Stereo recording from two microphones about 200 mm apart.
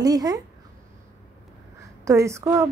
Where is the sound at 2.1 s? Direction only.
15° right (ahead or behind).